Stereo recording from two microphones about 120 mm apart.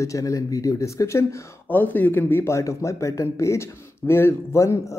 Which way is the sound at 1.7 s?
15° left (ahead or behind).